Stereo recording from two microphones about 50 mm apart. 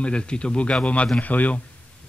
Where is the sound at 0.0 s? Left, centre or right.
Centre.